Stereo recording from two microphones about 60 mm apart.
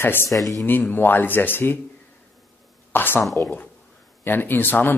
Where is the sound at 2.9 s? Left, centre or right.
Left.